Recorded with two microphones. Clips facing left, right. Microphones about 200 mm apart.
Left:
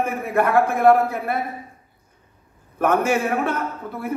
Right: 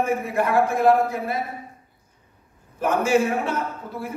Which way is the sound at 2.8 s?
60° left (ahead or behind).